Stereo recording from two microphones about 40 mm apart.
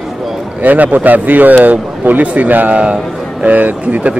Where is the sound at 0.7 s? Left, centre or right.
Right.